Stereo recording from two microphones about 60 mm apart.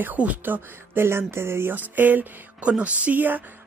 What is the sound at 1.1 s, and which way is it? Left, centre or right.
Speech, right.